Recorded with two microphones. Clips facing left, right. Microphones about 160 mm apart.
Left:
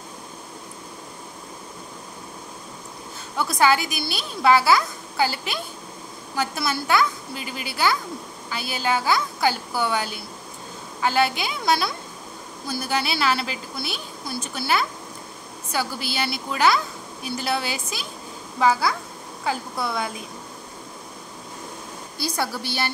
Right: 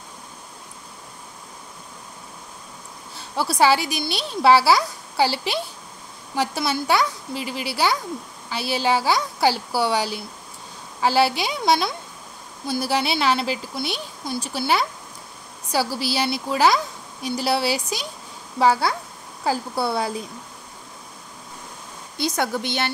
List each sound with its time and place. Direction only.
3.3 s a woman's voice: 30° right (ahead or behind)
15.7 s a woman's voice: 35° right (ahead or behind)
22.4 s a woman's voice: 20° right (ahead or behind)